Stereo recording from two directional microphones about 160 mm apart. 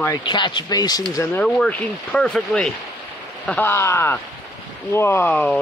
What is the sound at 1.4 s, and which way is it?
Speech, 5° left (ahead or behind).